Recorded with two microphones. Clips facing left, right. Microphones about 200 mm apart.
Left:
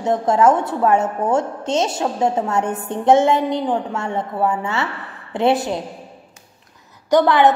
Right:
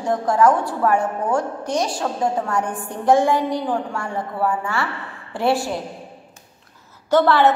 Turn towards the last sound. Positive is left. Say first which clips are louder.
# left 2 dB
turn(degrees=15)  # may be behind; listen again after turning